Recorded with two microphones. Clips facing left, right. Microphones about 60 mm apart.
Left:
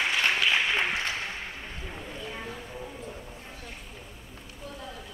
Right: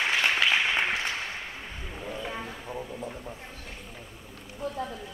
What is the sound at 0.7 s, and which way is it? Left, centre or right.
Applause, centre.